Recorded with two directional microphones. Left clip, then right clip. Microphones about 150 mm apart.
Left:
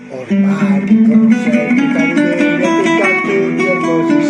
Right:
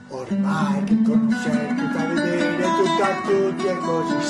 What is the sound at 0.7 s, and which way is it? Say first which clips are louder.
Music: left 9 dB; 15° left (ahead or behind).